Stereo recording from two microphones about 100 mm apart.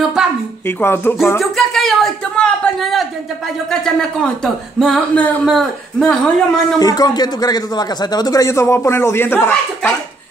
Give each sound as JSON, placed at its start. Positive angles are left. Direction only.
{"t": 0.7, "sound": "speech", "side_deg": 20}
{"t": 1.4, "sound": "a sound", "side_deg": 0}
{"t": 3.8, "sound": "speech", "side_deg": 5}
{"t": 6.8, "sound": "speech", "side_deg": 40}